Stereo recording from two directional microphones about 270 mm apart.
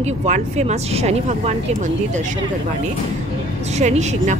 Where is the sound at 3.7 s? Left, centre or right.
Right.